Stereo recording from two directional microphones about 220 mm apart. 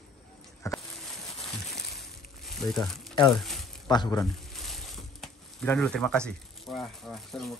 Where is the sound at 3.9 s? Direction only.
15° left (ahead or behind).